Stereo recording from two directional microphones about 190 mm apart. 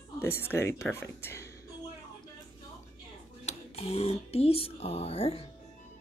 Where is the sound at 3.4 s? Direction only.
35° left (ahead or behind).